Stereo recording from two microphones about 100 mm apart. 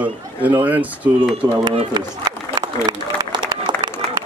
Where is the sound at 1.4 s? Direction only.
40° right (ahead or behind).